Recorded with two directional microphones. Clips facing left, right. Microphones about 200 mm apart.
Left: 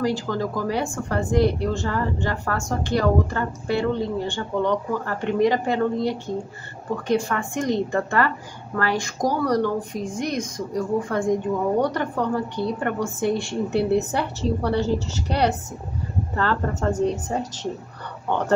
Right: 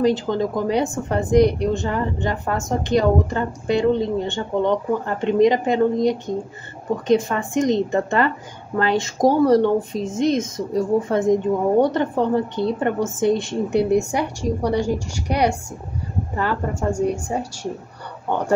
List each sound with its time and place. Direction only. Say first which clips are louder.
0.0 s a woman's voice: right 5 dB; 20° right (ahead or behind)